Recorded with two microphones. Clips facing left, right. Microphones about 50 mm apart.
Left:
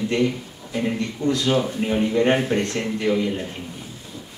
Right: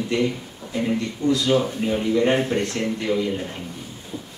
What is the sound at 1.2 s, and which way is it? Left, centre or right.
Speech, left.